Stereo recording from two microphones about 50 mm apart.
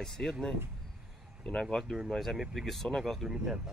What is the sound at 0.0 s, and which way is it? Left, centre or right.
Speech, centre.